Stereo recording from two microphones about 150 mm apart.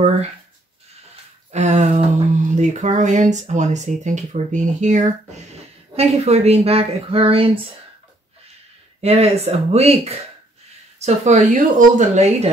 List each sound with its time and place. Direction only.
1.5 s speech: 50° right (ahead or behind)
9.0 s speech: 45° right (ahead or behind)